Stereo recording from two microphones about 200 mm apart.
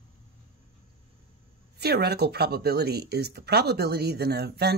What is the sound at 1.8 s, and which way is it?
Speech, 55° right (ahead or behind).